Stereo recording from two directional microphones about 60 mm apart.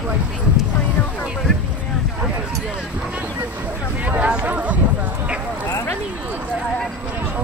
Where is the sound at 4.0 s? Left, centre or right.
Right.